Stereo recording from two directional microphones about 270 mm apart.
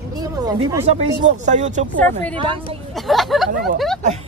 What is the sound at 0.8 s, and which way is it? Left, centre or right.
Speech, right.